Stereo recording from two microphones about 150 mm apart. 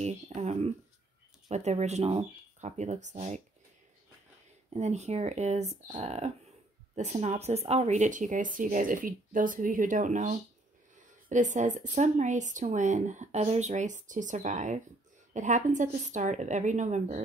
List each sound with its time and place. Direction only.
0.0 s speech: 50° right (ahead or behind)
4.7 s speech: 50° right (ahead or behind)